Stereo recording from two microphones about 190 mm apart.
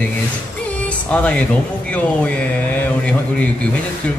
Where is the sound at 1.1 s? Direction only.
5° left (ahead or behind).